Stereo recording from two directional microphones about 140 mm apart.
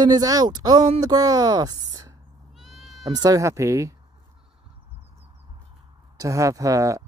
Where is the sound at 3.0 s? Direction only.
25° right (ahead or behind).